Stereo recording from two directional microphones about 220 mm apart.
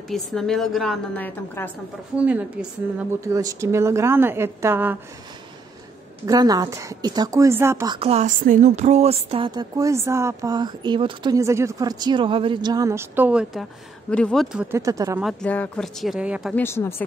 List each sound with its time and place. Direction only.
0.1 s a woman's voice: centre (ahead or behind)
2.1 s speech: 5° right (ahead or behind)
6.2 s a woman's voice: 15° right (ahead or behind)
15.2 s a woman's voice: 5° left (ahead or behind)
16.6 s speech: 10° left (ahead or behind)